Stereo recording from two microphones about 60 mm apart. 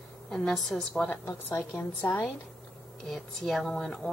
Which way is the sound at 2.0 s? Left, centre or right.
Left.